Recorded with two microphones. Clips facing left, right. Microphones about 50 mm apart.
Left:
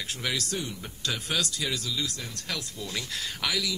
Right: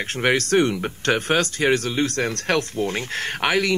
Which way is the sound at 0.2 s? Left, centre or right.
Right.